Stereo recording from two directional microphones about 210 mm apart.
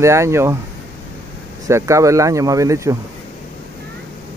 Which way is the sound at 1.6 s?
15° right (ahead or behind).